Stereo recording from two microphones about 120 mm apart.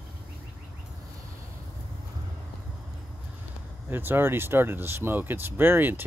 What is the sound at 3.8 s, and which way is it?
Speech, 15° right (ahead or behind).